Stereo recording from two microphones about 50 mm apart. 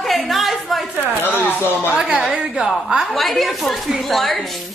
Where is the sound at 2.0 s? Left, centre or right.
Right.